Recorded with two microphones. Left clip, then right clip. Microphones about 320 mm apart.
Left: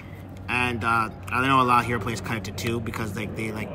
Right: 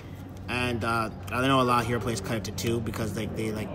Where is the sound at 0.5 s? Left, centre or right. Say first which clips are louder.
Left 5 dB; centre.